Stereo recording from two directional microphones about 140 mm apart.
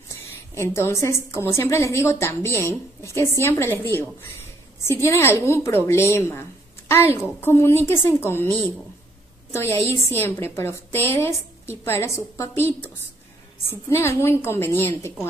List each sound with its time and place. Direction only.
0.6 s a woman's voice: 20° left (ahead or behind)
9.6 s a woman's voice: 20° left (ahead or behind)